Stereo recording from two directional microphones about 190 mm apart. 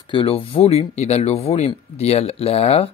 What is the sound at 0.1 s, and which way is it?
Speech, 30° left (ahead or behind).